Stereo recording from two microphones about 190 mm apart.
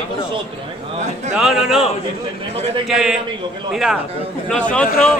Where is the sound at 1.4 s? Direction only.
Centre (ahead or behind).